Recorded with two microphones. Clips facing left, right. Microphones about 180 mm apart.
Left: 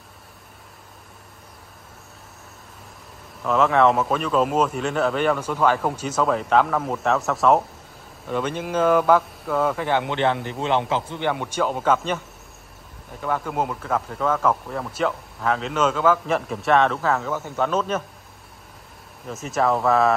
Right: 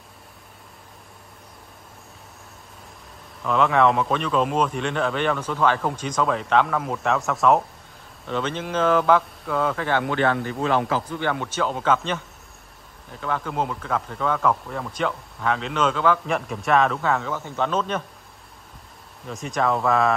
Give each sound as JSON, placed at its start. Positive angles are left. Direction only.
{"t": 3.4, "sound": "a man's voice", "side_deg": 0}
{"t": 11.2, "sound": "speech", "side_deg": 10}
{"t": 13.2, "sound": "speech", "side_deg": 10}
{"t": 19.2, "sound": "speech", "side_deg": 5}